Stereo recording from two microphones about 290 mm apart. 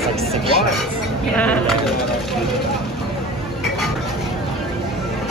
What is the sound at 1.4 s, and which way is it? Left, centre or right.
Speech, centre.